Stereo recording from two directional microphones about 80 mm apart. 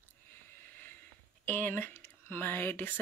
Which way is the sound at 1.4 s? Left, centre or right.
Left.